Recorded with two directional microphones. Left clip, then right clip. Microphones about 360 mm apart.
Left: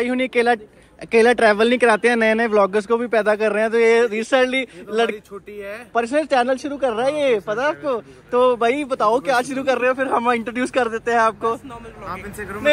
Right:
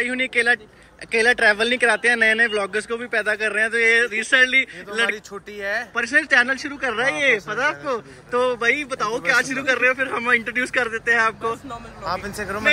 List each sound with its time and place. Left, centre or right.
0.0 s speech: centre
5.1 s speech: centre
5.9 s speech: centre
12.1 s speech: centre